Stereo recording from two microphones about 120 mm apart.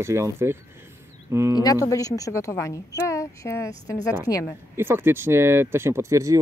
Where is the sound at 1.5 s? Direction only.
30° left (ahead or behind).